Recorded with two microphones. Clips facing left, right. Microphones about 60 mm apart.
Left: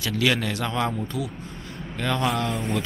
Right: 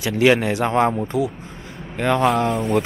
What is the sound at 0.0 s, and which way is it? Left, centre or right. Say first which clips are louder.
Speech: right 7 dB; right.